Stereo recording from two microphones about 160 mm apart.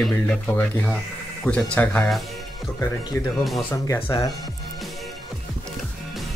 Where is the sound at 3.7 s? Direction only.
15° left (ahead or behind).